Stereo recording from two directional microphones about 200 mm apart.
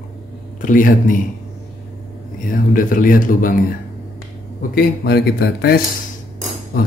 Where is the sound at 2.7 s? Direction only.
45° left (ahead or behind).